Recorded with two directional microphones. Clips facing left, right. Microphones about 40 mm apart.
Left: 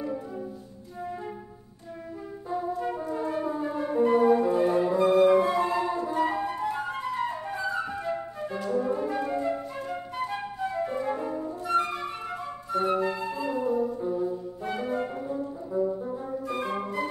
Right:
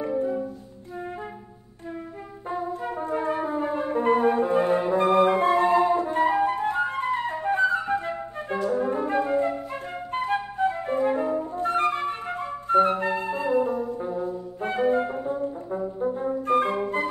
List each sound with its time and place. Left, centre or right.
0.1 s music: right
3.0 s music: right
7.8 s flute: right
8.6 s brass instrument: right
9.7 s music: right
11.5 s music: right
12.6 s flute: right
13.0 s music: right